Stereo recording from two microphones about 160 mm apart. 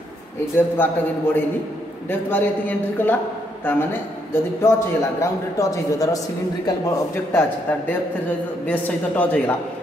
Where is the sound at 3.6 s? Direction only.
10° left (ahead or behind).